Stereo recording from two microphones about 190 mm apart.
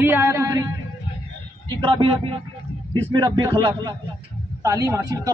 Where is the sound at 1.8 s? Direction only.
25° right (ahead or behind).